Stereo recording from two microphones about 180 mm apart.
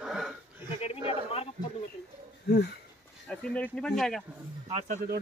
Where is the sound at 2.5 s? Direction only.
65° left (ahead or behind).